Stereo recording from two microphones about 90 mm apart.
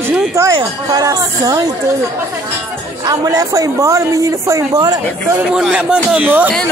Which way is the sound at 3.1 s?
40° right (ahead or behind).